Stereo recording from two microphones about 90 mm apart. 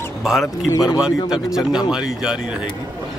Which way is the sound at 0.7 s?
40° left (ahead or behind).